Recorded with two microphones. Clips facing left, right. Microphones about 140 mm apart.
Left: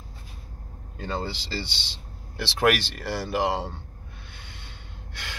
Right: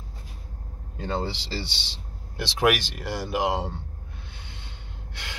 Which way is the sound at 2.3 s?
15° right (ahead or behind).